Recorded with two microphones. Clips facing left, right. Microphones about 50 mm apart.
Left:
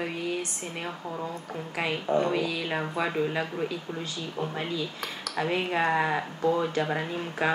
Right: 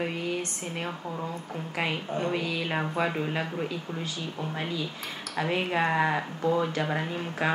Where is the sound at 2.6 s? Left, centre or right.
Centre.